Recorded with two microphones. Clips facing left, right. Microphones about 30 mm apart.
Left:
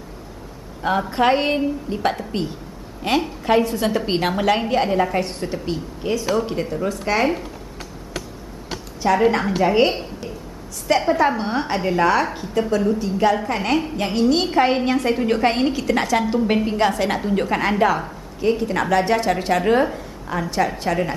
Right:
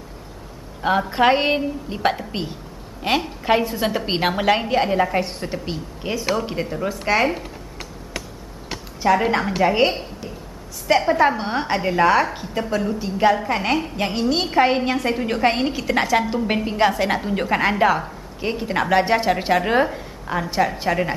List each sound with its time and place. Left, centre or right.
0.8 s a woman's voice: centre
9.0 s a woman's voice: centre
18.4 s a woman's voice: centre